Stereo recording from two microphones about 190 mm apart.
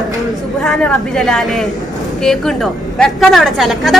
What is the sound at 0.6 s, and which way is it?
A woman's voice, 5° left (ahead or behind).